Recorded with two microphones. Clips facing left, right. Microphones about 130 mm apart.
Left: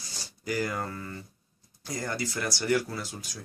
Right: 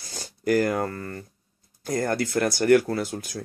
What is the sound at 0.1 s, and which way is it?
Speech, 55° right (ahead or behind).